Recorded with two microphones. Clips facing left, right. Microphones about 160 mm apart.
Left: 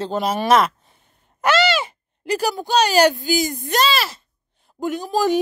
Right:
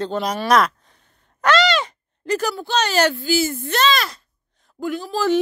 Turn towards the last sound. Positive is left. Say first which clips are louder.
# left 1 dB
turn(degrees=15)  # may be behind; listen again after turning